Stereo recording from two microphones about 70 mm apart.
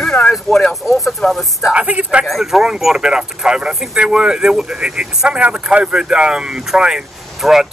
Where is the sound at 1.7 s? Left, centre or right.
Centre.